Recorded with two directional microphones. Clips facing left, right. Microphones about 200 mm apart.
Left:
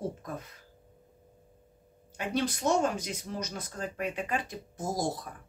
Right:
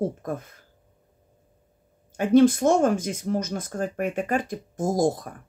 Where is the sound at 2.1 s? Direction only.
50° right (ahead or behind).